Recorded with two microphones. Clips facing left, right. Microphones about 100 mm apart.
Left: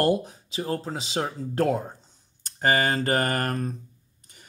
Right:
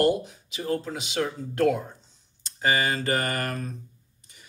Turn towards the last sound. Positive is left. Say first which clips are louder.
# left 3 dB
turn(degrees=45)  # may be behind; listen again after turning